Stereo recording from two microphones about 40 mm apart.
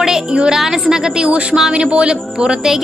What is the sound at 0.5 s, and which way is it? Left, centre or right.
Speech, centre.